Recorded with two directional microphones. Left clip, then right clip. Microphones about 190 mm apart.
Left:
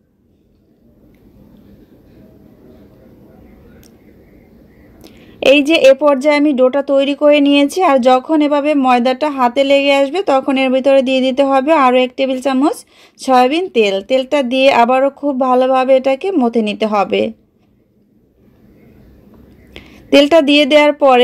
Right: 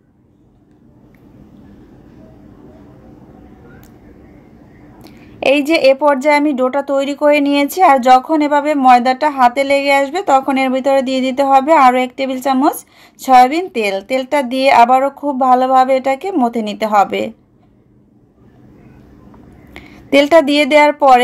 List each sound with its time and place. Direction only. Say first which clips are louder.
5.0 s whispering: left 3 dB; 40° left (ahead or behind)
5.9 s speech: left 1 dB; 30° left (ahead or behind)
19.7 s a sound: even; 35° left (ahead or behind)
20.2 s speech: even; 35° left (ahead or behind)